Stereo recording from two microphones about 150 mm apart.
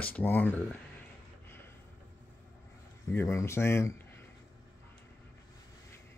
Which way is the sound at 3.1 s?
15° left (ahead or behind).